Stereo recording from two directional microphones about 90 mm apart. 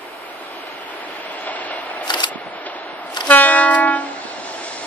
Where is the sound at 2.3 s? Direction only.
15° left (ahead or behind).